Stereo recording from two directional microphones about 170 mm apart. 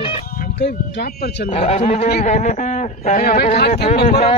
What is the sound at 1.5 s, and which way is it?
Speech, 40° left (ahead or behind).